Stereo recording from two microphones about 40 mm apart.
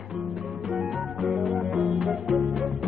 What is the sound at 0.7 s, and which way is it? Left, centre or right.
Music, centre.